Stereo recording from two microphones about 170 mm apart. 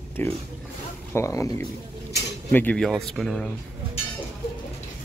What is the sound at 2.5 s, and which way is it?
Speech, 10° left (ahead or behind).